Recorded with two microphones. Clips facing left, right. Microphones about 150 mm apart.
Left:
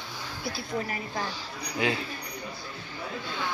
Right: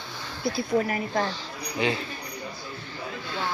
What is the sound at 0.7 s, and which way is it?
Speech, 50° right (ahead or behind).